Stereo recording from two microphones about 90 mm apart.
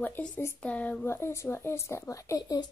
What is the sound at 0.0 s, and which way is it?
Speech, 20° left (ahead or behind).